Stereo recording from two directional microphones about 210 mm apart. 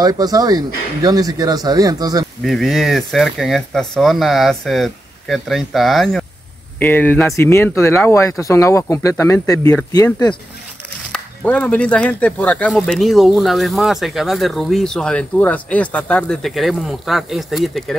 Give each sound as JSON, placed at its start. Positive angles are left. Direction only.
{"t": 0.0, "sound": "speech", "side_deg": -15}
{"t": 2.4, "sound": "speech", "side_deg": 0}